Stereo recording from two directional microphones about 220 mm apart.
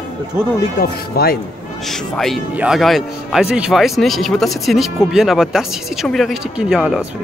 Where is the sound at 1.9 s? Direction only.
Centre (ahead or behind).